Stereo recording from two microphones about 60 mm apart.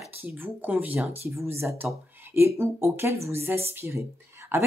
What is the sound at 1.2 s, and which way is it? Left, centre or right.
Speech, right.